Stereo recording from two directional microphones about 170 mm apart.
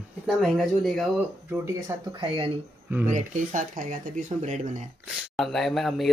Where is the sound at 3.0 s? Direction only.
50° right (ahead or behind).